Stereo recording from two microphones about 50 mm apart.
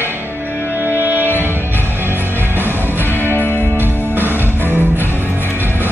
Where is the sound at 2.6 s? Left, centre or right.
Right.